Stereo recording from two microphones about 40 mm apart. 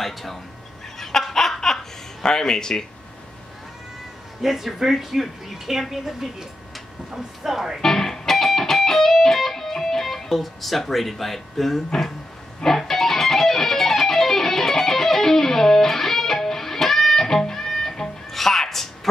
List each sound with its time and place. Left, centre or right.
0.0 s cat: centre
0.9 s laughter: centre
2.2 s speech: centre
4.4 s speech: centre
7.4 s speech: centre
7.8 s music: centre